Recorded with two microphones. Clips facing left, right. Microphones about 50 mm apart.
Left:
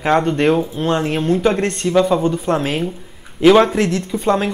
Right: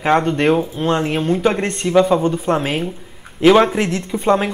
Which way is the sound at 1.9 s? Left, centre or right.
Centre.